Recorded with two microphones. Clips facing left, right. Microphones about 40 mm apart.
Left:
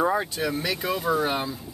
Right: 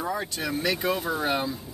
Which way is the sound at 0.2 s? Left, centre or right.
Centre.